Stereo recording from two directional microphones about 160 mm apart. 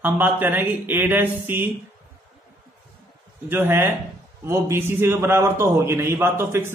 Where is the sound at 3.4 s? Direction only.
15° right (ahead or behind).